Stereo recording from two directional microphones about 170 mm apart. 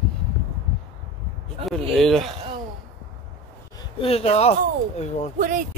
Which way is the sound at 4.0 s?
35° left (ahead or behind).